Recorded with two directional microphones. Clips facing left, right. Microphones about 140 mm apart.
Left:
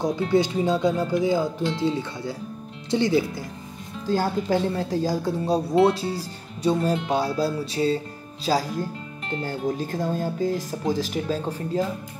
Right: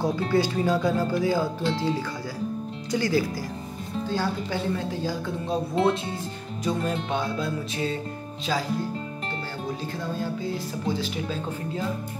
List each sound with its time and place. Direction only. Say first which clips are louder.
0.0 s speech: left 2 dB; 20° left (ahead or behind)
4.1 s speech: left 7 dB; 40° left (ahead or behind)